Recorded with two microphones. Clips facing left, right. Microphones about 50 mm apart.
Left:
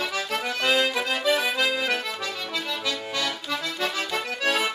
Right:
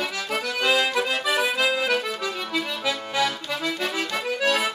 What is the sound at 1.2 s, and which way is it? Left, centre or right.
Accordion, centre.